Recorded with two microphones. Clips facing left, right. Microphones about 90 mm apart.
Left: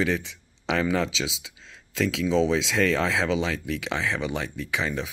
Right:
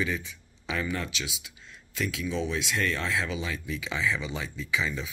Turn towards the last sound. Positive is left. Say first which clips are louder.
# left 2 dB
turn(degrees=65)  # may be behind; listen again after turning